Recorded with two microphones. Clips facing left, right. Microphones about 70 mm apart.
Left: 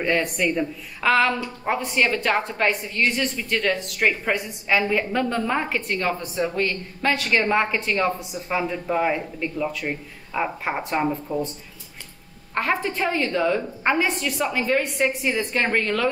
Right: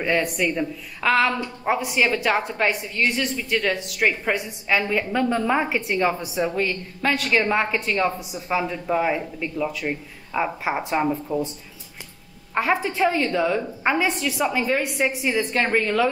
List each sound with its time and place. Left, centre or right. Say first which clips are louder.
0.0 s a woman's voice: even; centre
12.5 s a woman's voice: right 2 dB; centre